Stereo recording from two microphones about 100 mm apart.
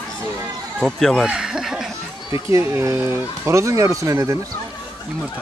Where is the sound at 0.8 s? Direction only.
5° left (ahead or behind).